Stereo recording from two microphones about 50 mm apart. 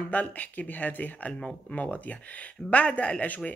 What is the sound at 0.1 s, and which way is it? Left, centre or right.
Speech, left.